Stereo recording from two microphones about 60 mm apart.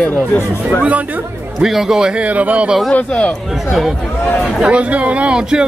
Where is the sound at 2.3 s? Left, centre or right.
Right.